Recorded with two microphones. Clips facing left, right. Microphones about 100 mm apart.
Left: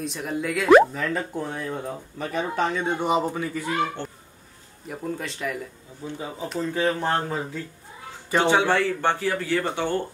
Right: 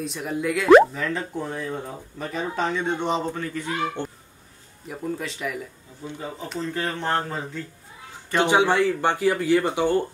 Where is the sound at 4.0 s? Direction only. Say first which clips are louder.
Right 3 dB; 15° right (ahead or behind).